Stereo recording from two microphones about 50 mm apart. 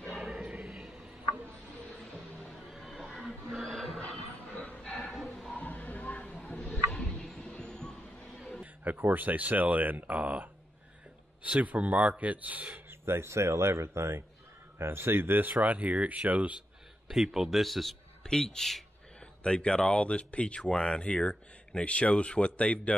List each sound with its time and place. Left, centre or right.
0.6 s a sound: centre
1.9 s music: centre
2.9 s a sound: centre
3.6 s music: centre
4.5 s music: left
5.1 s a sound: centre
5.6 s a sound: left; by 7.9 s centre
8.8 s speech: right
13.0 s speech: right
14.8 s a man's voice: right
15.6 s speech: right
17.1 s speech: centre
18.2 s speech: centre
19.1 s speech: centre